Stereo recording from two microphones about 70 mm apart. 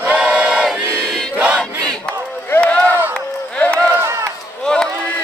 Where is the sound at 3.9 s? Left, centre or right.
Right.